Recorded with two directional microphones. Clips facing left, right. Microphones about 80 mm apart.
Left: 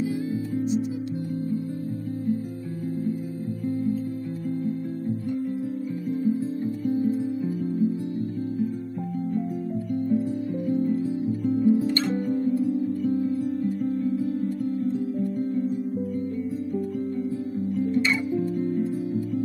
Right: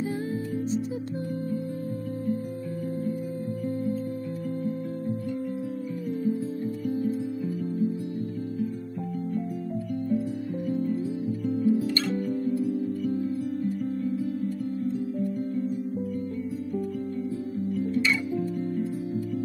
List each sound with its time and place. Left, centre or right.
6.9 s music: left
10.7 s music: left
17.7 s music: left